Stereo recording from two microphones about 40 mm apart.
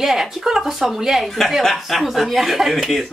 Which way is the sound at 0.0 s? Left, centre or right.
Centre.